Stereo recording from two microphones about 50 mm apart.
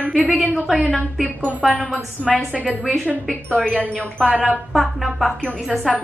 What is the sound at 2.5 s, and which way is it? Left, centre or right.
Speech, right.